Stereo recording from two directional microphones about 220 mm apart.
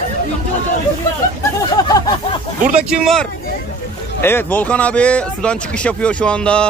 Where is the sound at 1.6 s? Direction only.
15° left (ahead or behind).